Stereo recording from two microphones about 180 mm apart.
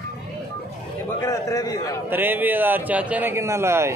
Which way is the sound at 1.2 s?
15° left (ahead or behind).